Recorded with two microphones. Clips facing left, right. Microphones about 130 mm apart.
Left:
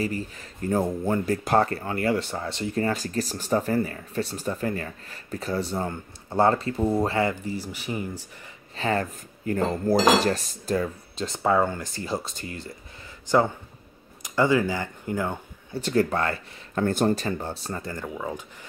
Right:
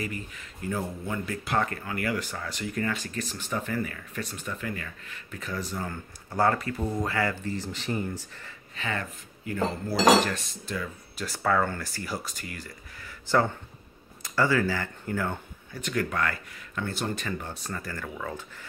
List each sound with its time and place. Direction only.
0.0 s speech: 35° left (ahead or behind)
7.5 s speech: 10° left (ahead or behind)
8.7 s speech: 35° left (ahead or behind)
11.1 s speech: 20° left (ahead or behind)
15.7 s speech: 30° left (ahead or behind)
16.8 s speech: 40° left (ahead or behind); by 18.4 s 20° left (ahead or behind)